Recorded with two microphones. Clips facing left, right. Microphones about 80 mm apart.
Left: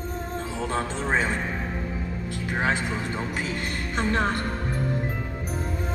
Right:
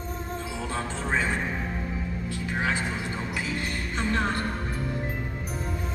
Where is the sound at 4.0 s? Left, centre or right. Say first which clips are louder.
Left 3 dB; left.